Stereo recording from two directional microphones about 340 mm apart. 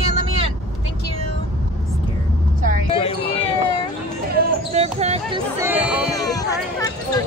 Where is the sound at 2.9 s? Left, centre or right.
Centre.